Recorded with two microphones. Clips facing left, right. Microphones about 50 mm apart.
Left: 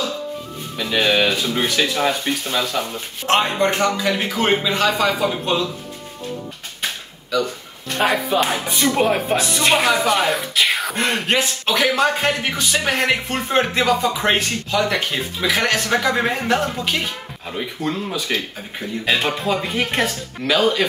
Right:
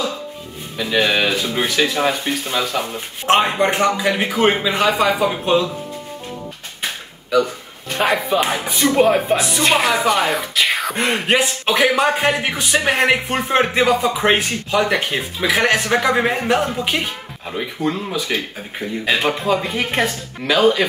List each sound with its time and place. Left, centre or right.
0.7 s speech: centre
7.3 s speech: right